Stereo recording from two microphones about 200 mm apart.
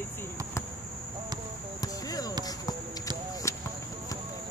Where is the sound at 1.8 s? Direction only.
20° left (ahead or behind).